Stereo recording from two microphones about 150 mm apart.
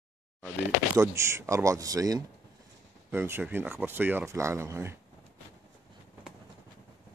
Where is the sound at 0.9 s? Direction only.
20° right (ahead or behind).